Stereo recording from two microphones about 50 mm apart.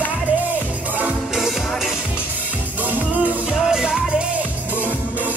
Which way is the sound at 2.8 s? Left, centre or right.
Right.